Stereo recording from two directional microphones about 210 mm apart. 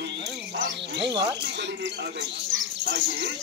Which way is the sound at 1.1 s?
55° right (ahead or behind).